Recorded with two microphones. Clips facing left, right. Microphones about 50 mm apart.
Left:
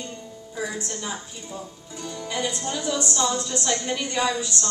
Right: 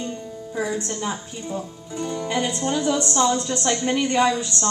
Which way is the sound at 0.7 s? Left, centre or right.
Right.